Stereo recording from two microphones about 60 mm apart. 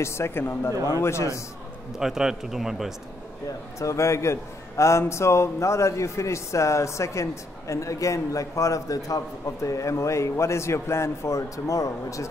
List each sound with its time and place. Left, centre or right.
0.0 s speech: left
0.9 s a man's voice: left
2.0 s a man's voice: centre
3.8 s a man's voice: left